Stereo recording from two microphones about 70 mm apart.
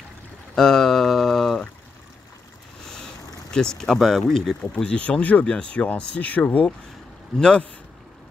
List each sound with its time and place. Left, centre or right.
0.6 s a sound: centre
3.5 s speech: centre
4.6 s speech: centre